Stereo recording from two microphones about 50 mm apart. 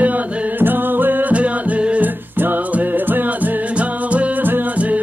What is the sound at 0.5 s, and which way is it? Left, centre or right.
Music, right.